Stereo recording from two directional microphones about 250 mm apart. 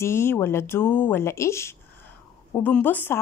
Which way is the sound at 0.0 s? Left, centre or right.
Centre.